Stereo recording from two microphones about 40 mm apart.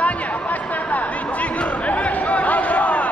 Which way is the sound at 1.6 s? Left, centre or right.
Left.